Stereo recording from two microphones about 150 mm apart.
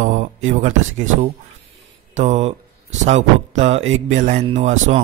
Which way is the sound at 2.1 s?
50° right (ahead or behind).